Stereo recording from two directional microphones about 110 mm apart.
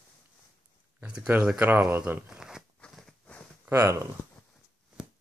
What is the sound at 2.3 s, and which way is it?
Zipper, 5° right (ahead or behind).